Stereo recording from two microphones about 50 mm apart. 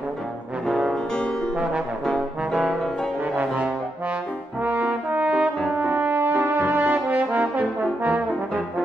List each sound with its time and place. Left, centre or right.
2.5 s brass instrument: centre
3.3 s brass instrument: right
4.6 s french horn: right
6.7 s brass instrument: right